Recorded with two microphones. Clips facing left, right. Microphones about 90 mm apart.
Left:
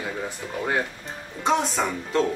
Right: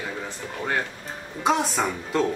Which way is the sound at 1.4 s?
5° right (ahead or behind).